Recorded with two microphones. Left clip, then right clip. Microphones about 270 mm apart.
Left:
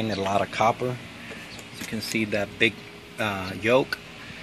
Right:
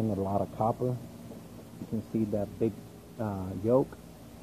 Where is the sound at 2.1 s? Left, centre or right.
Left.